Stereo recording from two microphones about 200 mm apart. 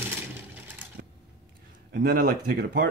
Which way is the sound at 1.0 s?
55° right (ahead or behind).